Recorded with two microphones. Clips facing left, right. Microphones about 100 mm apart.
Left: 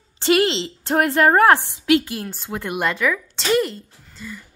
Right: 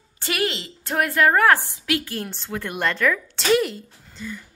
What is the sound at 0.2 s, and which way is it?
A woman's voice, 25° left (ahead or behind).